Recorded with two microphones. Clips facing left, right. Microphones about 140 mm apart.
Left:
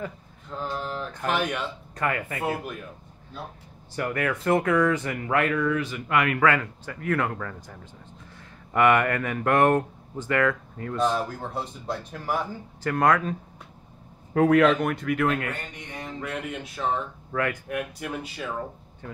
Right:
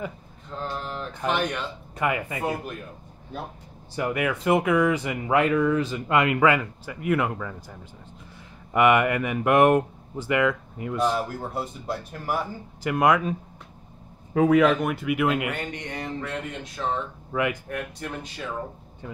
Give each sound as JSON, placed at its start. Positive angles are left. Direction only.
{"t": 0.6, "sound": "speech", "side_deg": 0}
{"t": 2.0, "sound": "speech", "side_deg": -15}
{"t": 3.9, "sound": "speech", "side_deg": -15}
{"t": 8.7, "sound": "speech", "side_deg": -15}
{"t": 15.5, "sound": "speech", "side_deg": -80}
{"t": 16.2, "sound": "speech", "side_deg": 10}
{"t": 17.3, "sound": "speech", "side_deg": -10}
{"t": 17.6, "sound": "speech", "side_deg": 10}